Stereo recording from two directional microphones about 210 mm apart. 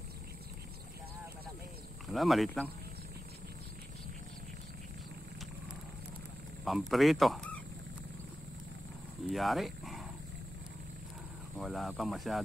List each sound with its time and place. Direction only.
2.1 s speech: centre (ahead or behind)
6.6 s speech: centre (ahead or behind)
9.3 s speech: centre (ahead or behind)
11.5 s speech: centre (ahead or behind)